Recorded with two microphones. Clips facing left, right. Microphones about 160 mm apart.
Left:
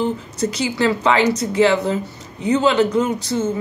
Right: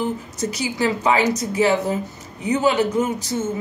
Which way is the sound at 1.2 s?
70° left (ahead or behind).